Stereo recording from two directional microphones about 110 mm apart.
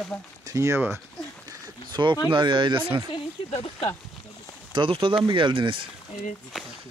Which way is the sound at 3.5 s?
65° left (ahead or behind).